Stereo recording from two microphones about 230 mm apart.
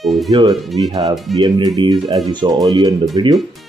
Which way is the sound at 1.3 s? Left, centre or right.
Centre.